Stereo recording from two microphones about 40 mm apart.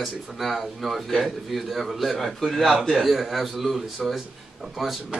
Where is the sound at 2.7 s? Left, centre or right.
Centre.